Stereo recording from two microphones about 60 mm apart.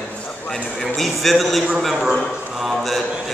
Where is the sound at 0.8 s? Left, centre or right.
Centre.